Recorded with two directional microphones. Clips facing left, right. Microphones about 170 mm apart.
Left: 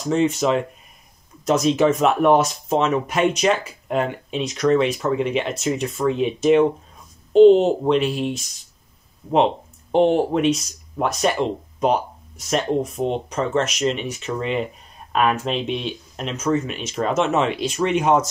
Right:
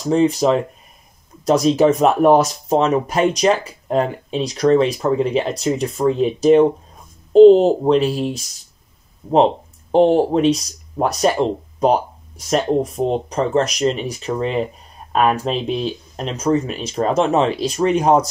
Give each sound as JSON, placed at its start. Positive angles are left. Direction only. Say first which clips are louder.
{"t": 0.0, "sound": "speech", "louder": "right 4 dB", "side_deg": -35}